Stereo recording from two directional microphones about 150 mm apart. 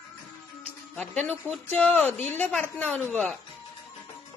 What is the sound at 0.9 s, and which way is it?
Speech, 10° left (ahead or behind).